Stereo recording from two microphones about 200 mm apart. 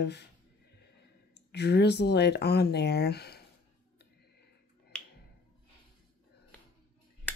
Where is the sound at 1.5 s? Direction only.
55° left (ahead or behind).